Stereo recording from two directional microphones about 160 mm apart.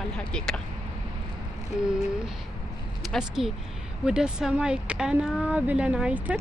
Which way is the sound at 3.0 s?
Centre (ahead or behind).